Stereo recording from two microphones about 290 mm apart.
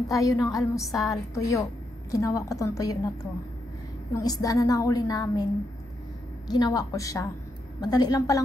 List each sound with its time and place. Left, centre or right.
0.1 s a woman's voice: centre
4.1 s a woman's voice: centre